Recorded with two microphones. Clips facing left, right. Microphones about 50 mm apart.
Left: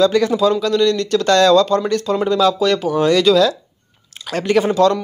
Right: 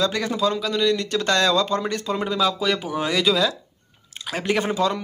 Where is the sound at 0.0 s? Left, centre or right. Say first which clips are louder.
Left 8 dB; centre.